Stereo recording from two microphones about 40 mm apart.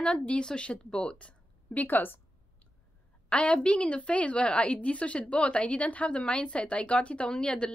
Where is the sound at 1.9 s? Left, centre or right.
Left.